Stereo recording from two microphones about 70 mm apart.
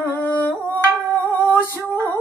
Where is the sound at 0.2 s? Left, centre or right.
Left.